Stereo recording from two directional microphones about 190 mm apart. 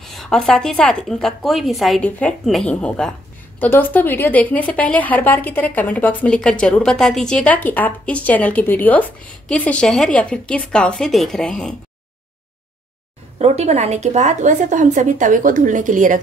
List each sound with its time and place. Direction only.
0.0 s a woman's voice: centre (ahead or behind)
13.4 s speech: 35° right (ahead or behind)